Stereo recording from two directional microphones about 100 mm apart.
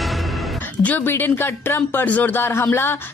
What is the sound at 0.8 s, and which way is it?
A woman's voice, 15° left (ahead or behind).